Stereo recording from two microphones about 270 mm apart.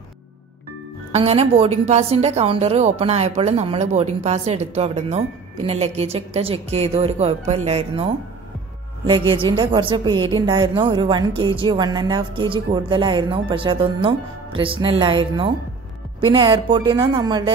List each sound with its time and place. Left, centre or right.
1.1 s a woman's voice: right